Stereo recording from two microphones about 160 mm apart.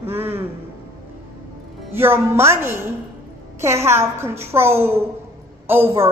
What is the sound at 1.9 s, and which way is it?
A woman's voice, 15° right (ahead or behind).